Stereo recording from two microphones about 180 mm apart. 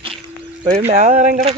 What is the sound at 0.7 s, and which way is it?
Speech, 35° right (ahead or behind).